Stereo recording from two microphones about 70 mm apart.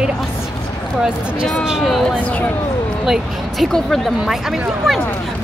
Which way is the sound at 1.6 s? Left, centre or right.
Centre.